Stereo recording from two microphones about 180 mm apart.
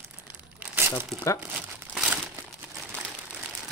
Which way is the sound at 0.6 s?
10° right (ahead or behind).